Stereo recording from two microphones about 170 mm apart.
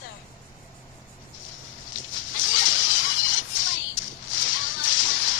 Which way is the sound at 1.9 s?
90° left.